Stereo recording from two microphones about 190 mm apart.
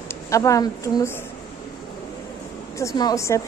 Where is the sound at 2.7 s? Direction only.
15° left (ahead or behind).